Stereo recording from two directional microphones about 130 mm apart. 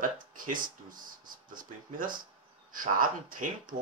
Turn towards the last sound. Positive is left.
turn(degrees=-90)